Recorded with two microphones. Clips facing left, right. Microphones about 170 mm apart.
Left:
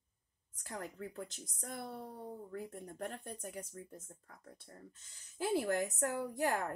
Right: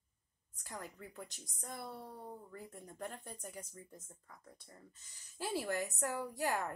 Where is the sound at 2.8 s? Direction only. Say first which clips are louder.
Left 3 dB; 55° left (ahead or behind).